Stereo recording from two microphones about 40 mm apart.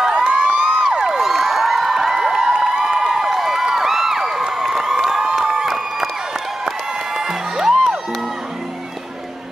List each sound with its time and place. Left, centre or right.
0.1 s crowd: right
1.2 s a sound: centre
5.3 s crowd: centre
7.2 s music: centre